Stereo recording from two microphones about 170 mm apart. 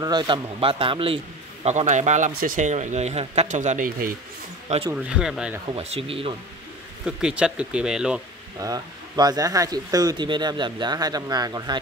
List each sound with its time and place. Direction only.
0.0 s a man's voice: 25° right (ahead or behind); by 4.1 s 50° right (ahead or behind)
4.6 s speech: 35° right (ahead or behind)
4.9 s speech: 5° right (ahead or behind)
5.7 s speech: 35° right (ahead or behind)
7.1 s speech: 5° right (ahead or behind)
8.5 s speech: 20° right (ahead or behind)